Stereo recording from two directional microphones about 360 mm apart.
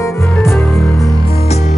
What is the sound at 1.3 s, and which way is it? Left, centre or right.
Music, centre.